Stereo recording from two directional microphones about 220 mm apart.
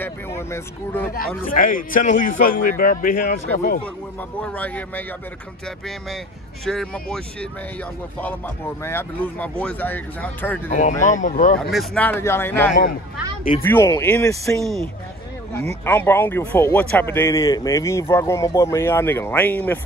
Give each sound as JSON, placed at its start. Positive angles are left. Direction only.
{"t": 0.0, "sound": "speech", "side_deg": 10}
{"t": 1.4, "sound": "a man's voice", "side_deg": 40}
{"t": 4.4, "sound": "speech", "side_deg": 5}
{"t": 6.6, "sound": "speech", "side_deg": 0}
{"t": 8.8, "sound": "speech", "side_deg": 10}
{"t": 10.8, "sound": "a man's voice", "side_deg": 35}
{"t": 11.7, "sound": "speech", "side_deg": 5}
{"t": 15.8, "sound": "speech", "side_deg": 10}